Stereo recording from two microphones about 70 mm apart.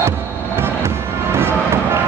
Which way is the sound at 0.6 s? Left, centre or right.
Right.